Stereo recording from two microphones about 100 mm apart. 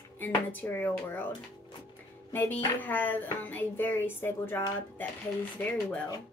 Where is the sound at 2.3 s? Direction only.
20° left (ahead or behind).